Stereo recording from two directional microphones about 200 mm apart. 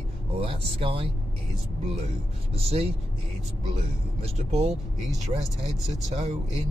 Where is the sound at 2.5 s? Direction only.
30° right (ahead or behind).